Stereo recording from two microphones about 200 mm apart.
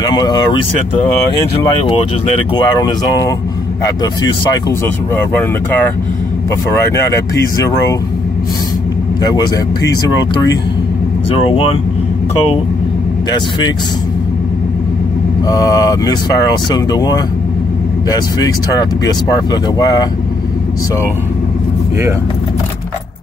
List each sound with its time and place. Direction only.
0.1 s speech: 20° left (ahead or behind)
2.5 s speech: 20° left (ahead or behind)
6.7 s speech: 15° left (ahead or behind)
9.8 s speech: 20° left (ahead or behind)
13.3 s speech: 20° left (ahead or behind)
15.4 s speech: 20° left (ahead or behind)